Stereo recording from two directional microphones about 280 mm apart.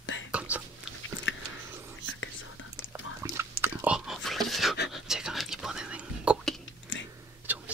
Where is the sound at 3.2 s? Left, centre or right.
Centre.